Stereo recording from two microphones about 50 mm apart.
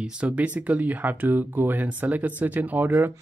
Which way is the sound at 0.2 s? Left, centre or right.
Right.